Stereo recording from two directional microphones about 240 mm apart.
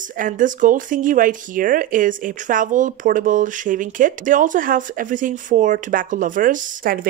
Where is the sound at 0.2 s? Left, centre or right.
Right.